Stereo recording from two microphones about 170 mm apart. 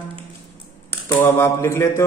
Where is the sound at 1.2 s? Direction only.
15° left (ahead or behind).